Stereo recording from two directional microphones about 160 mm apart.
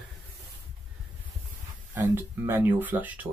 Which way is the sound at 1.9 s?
15° right (ahead or behind).